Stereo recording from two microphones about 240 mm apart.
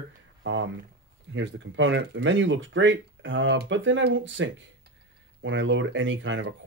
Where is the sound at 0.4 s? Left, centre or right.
Right.